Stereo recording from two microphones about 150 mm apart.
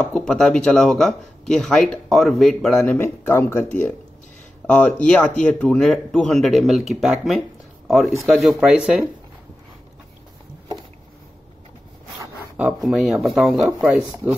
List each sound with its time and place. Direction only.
0.0 s speech: 5° left (ahead or behind)
4.6 s speech: 5° left (ahead or behind)
12.5 s speech: 5° right (ahead or behind)
13.7 s speech: 10° right (ahead or behind)